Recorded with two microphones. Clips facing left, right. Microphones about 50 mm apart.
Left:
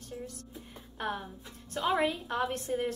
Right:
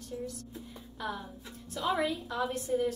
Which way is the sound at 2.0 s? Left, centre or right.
Left.